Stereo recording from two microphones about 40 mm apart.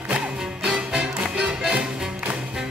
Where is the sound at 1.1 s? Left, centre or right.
Right.